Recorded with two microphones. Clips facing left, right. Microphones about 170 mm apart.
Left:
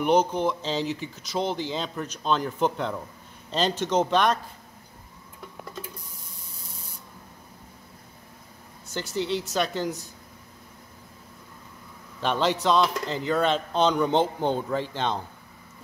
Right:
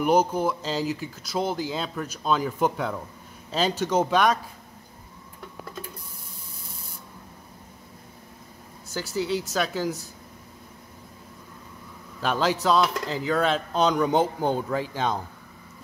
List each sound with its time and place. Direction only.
0.0 s speech: 5° right (ahead or behind)
8.9 s speech: 5° right (ahead or behind)
12.2 s speech: 5° right (ahead or behind)